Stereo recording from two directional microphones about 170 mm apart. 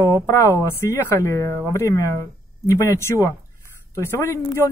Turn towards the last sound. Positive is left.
turn(degrees=15)  # may be behind; listen again after turning